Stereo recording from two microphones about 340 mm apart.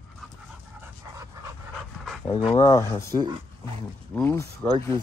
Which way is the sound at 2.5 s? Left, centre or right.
Centre.